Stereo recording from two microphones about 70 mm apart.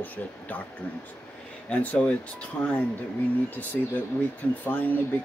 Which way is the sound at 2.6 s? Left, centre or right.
Left.